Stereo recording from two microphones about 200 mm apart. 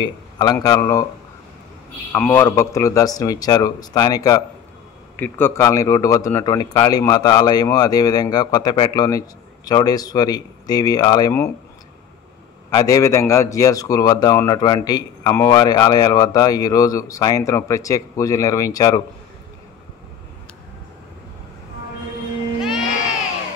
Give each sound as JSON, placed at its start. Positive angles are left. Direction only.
{"t": 0.0, "sound": "a man's voice", "side_deg": 20}
{"t": 2.1, "sound": "a man's voice", "side_deg": 10}
{"t": 12.7, "sound": "a man's voice", "side_deg": 15}